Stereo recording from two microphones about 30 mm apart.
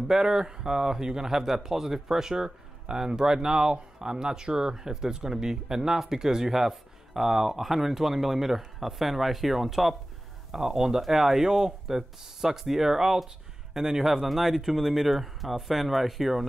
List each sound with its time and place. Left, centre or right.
0.1 s speech: right
14.3 s speech: centre